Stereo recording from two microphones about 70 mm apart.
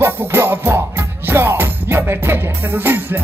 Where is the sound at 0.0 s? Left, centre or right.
Right.